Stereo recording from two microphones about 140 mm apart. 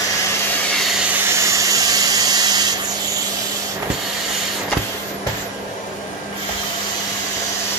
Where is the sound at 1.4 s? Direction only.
20° right (ahead or behind).